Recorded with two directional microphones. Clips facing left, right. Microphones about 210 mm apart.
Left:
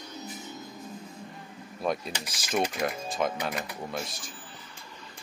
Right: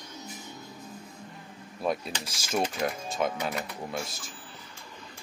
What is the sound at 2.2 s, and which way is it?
Speech, 25° right (ahead or behind).